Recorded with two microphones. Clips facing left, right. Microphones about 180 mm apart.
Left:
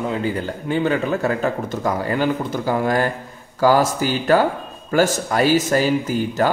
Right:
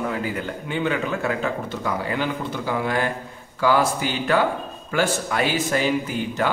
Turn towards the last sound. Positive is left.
turn(degrees=40)  # may be behind; listen again after turning